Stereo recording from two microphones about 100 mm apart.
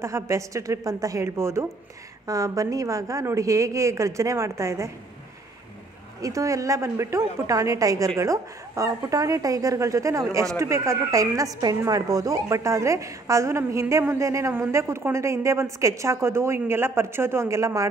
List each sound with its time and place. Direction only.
0.0 s a woman's voice: 30° right (ahead or behind)
6.2 s a woman's voice: 35° right (ahead or behind)